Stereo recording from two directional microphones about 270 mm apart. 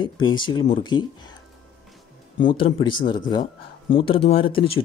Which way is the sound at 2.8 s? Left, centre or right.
Centre.